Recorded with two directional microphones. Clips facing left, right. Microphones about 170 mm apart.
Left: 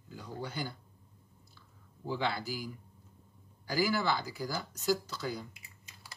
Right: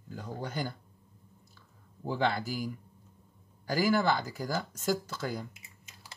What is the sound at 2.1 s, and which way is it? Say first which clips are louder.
Speech: right 4 dB; 50° right (ahead or behind).